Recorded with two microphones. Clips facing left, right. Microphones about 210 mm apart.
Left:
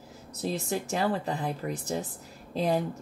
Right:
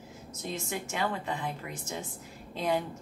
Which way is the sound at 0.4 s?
35° left (ahead or behind).